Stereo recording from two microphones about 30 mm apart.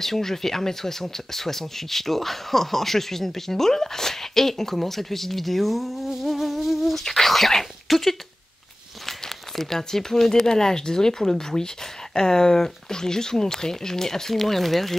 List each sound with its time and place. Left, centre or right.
0.0 s speech: centre
6.2 s insect: centre
7.0 s speech: centre
9.6 s speech: centre